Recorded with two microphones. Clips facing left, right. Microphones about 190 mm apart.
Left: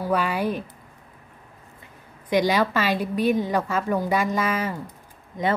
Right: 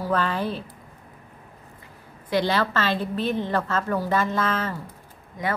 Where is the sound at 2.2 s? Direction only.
15° left (ahead or behind).